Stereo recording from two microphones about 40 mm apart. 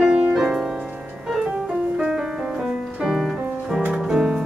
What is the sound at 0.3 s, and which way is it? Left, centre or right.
Music, centre.